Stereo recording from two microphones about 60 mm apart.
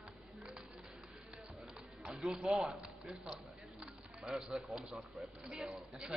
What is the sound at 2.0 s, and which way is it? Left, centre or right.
Speech, centre.